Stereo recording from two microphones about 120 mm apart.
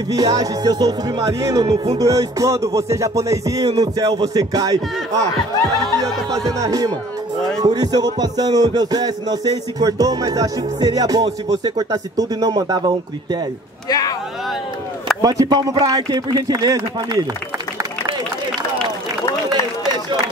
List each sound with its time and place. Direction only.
0.1 s speech: 30° right (ahead or behind)
2.0 s music: 30° right (ahead or behind)
6.6 s music: 30° right (ahead or behind)
7.6 s speech: 35° right (ahead or behind)
13.8 s a sound: 30° left (ahead or behind)
15.2 s speech: 30° right (ahead or behind)